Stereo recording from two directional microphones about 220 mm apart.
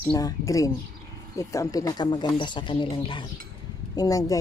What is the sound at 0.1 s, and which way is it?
A woman's voice, 15° left (ahead or behind).